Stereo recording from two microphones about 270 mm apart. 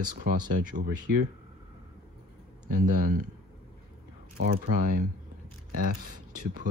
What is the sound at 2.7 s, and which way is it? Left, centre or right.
Speech, right.